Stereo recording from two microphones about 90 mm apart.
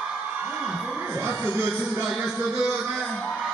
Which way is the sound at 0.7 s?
5° right (ahead or behind).